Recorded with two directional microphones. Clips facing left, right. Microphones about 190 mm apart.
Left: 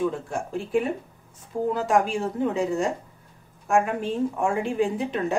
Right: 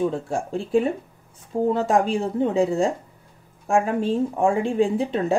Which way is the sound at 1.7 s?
30° right (ahead or behind).